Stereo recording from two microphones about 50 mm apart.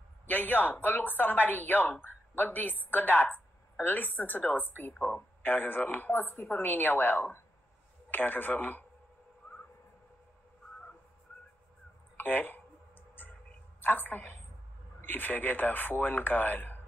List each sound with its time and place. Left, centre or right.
0.3 s speech: left
12.2 s speech: left
13.2 s music: left
13.7 s a woman's voice: left